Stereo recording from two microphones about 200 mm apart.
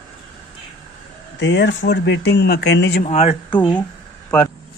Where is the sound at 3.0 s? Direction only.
35° left (ahead or behind).